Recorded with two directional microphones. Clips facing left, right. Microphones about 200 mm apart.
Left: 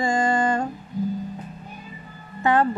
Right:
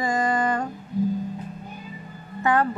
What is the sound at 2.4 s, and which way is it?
Speech, 30° left (ahead or behind).